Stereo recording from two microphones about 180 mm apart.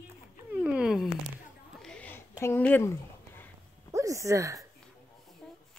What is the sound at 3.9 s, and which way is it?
Speech, 15° right (ahead or behind).